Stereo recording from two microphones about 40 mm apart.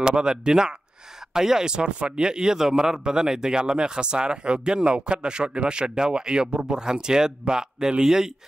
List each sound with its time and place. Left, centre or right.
0.0 s speech: right